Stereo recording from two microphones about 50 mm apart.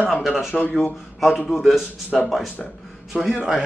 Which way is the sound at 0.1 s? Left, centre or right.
Centre.